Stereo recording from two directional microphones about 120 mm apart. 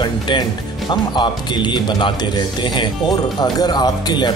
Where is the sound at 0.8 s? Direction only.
40° left (ahead or behind).